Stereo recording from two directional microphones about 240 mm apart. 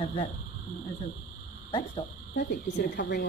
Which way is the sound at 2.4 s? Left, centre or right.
Left.